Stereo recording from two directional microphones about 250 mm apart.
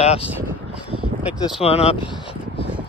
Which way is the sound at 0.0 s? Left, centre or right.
Left.